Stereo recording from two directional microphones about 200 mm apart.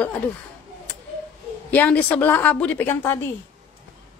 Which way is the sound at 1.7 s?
10° left (ahead or behind).